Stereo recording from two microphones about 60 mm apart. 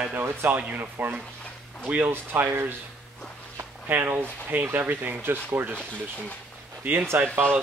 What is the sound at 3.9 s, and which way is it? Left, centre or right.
Speech, right.